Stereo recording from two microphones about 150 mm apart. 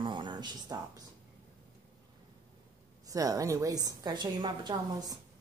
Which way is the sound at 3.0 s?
25° right (ahead or behind).